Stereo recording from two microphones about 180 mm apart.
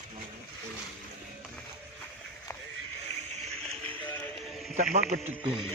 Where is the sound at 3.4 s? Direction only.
35° right (ahead or behind).